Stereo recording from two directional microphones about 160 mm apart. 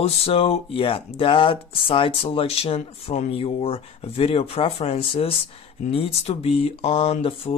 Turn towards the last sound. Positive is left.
turn(degrees=35)  # may be behind; listen again after turning